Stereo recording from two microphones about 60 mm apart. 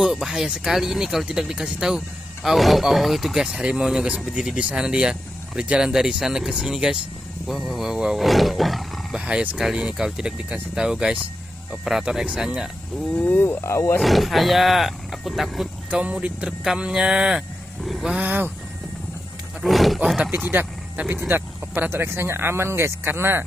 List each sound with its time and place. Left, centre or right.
0.0 s speech: centre
9.1 s speech: centre
12.0 s speech: centre
13.1 s speech: left
13.4 s speech: left
14.0 s speech: centre
15.9 s speech: right
18.2 s speech: right
19.6 s speech: centre
20.2 s speech: right